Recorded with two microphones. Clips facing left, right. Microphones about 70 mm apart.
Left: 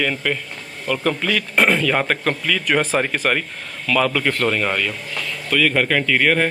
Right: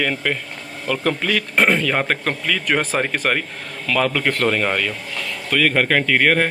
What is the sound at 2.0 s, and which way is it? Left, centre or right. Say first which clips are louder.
Speech: left 1 dB; right.